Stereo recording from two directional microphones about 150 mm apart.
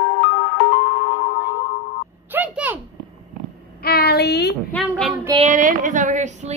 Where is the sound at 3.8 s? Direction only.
90° left.